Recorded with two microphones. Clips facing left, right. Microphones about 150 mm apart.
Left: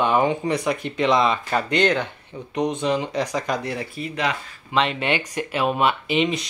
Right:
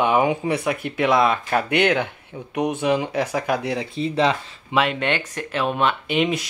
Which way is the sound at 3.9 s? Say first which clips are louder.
Right 7 dB; 25° right (ahead or behind).